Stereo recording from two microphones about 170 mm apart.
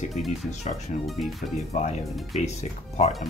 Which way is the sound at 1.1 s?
Centre (ahead or behind).